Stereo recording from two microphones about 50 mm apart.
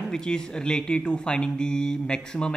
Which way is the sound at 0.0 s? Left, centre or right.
Centre.